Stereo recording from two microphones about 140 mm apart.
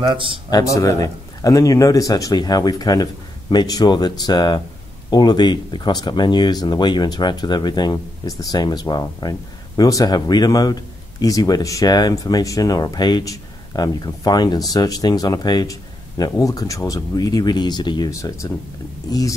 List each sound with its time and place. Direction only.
0.0 s speech: 35° right (ahead or behind)
0.5 s speech: 25° left (ahead or behind)